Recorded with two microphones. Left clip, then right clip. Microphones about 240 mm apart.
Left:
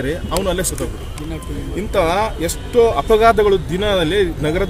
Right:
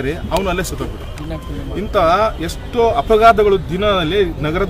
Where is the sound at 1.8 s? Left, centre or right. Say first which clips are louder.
Right 3 dB; centre.